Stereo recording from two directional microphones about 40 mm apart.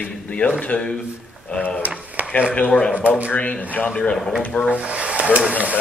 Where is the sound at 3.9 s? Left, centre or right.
Left.